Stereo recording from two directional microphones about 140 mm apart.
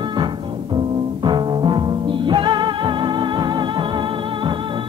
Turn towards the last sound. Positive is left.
turn(degrees=-35)  # may be behind; listen again after turning